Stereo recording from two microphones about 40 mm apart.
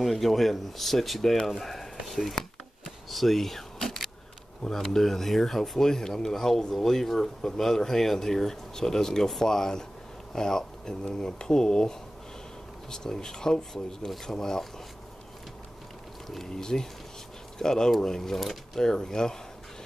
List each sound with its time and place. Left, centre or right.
0.0 s speech: centre
2.0 s a sound: centre
4.6 s speech: centre
16.3 s speech: centre